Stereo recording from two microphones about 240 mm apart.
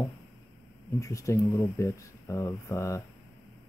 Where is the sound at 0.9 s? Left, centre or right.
Centre.